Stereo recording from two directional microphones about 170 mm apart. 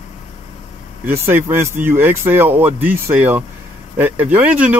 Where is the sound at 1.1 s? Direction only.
10° right (ahead or behind).